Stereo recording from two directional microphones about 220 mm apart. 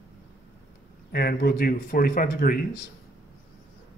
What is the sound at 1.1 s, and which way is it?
Speech, 45° left (ahead or behind).